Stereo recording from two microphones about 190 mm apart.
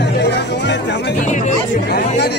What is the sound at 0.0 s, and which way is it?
Music, 65° left (ahead or behind).